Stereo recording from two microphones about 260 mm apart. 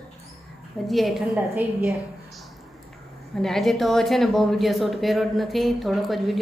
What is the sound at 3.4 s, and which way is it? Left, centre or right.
Speech, centre.